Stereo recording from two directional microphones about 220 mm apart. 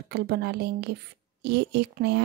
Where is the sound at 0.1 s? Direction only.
45° right (ahead or behind).